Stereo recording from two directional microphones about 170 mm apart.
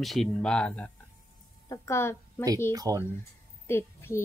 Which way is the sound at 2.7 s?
20° right (ahead or behind).